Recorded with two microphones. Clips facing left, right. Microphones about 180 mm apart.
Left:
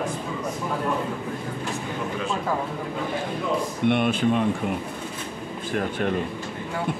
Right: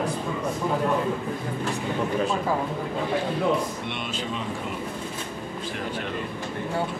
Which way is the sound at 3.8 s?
55° left (ahead or behind).